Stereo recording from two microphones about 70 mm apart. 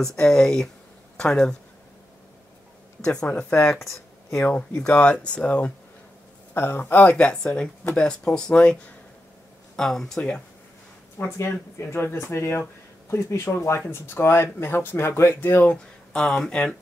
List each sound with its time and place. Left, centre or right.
0.1 s speech: centre
3.0 s speech: centre
3.7 s speech: centre
4.5 s speech: centre
6.5 s speech: left
7.2 s speech: centre
11.2 s speech: left
15.5 s speech: centre